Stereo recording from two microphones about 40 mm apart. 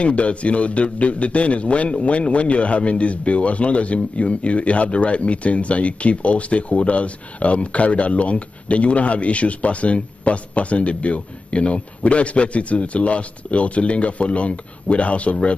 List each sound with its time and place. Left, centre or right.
0.0 s a man's voice: left